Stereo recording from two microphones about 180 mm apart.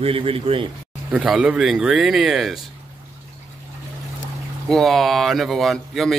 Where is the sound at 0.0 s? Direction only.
30° right (ahead or behind).